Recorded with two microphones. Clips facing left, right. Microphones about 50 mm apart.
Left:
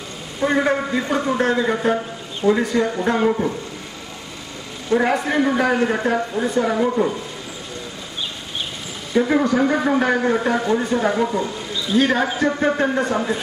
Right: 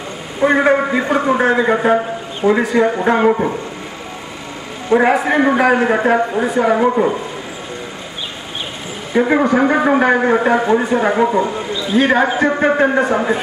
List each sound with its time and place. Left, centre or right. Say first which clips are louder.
0.4 s a man's voice: right 6 dB; right
4.8 s a man's voice: right 5 dB; right
9.1 s a man's voice: right 4 dB; right
11.8 s basketball bounce: right 3 dB; right
12.3 s a man's voice: right 5 dB; right